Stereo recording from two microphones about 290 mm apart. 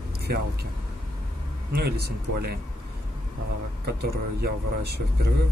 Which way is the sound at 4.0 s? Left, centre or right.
Right.